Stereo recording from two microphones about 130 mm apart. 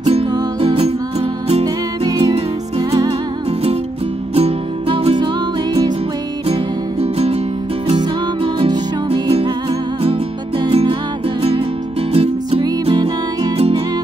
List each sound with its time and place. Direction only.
0.6 s music: 50° right (ahead or behind)
1.6 s music: 30° right (ahead or behind)
4.4 s music: 45° right (ahead or behind)
6.4 s music: 50° right (ahead or behind)
7.9 s music: 40° right (ahead or behind)
10.6 s music: 45° right (ahead or behind)
12.1 s music: 45° right (ahead or behind)